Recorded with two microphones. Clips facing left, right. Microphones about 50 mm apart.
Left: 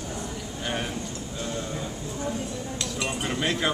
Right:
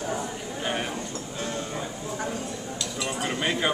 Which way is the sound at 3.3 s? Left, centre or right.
Centre.